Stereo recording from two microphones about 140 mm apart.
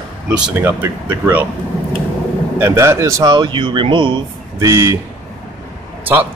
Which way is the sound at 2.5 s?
20° right (ahead or behind).